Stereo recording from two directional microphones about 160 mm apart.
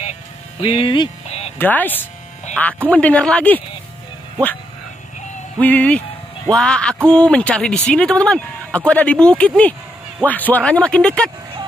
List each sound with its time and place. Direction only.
0.6 s speech: 35° left (ahead or behind)
1.6 s speech: 10° left (ahead or behind)
5.6 s speech: 10° left (ahead or behind)